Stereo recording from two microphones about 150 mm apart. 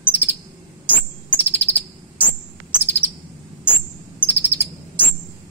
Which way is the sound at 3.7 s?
15° left (ahead or behind).